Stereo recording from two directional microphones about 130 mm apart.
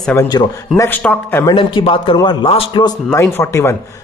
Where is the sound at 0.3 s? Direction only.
30° left (ahead or behind).